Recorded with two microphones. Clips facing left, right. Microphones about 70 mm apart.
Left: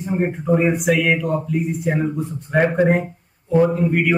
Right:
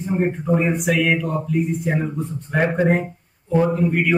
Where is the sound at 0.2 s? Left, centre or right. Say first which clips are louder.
Left 2 dB; centre.